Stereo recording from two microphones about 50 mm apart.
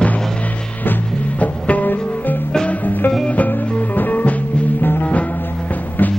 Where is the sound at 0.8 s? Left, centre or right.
Left.